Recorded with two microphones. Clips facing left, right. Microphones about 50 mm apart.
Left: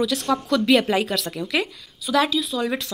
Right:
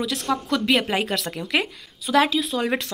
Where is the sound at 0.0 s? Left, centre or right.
Centre.